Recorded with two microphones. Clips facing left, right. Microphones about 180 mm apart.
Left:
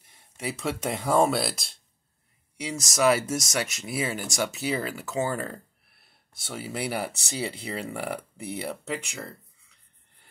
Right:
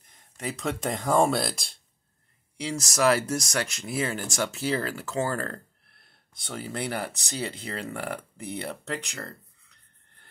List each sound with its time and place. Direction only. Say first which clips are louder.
0.0 s speech: left 1 dB; 10° left (ahead or behind)